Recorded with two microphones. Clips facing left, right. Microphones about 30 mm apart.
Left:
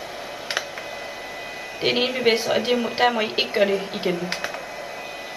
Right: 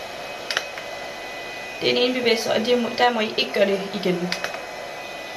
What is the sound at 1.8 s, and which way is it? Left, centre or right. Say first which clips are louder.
A woman's voice: right 1 dB; centre.